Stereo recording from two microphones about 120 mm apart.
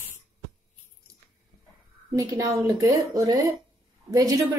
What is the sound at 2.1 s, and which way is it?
A woman's voice, 25° right (ahead or behind).